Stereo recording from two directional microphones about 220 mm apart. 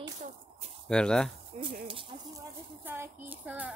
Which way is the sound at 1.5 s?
30° right (ahead or behind).